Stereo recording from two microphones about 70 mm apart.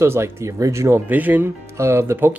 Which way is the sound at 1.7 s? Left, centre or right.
Right.